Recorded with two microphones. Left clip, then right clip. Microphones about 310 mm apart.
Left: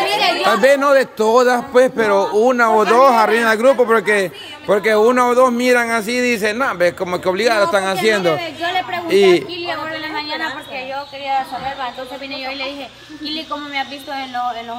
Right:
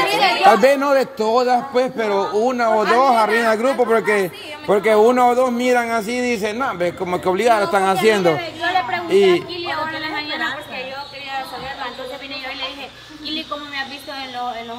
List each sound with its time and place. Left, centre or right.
0.5 s a man's voice: centre
8.4 s chatter: left
9.1 s a sound: centre